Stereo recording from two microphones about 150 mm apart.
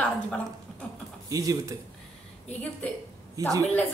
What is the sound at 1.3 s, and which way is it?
Speech, 25° right (ahead or behind).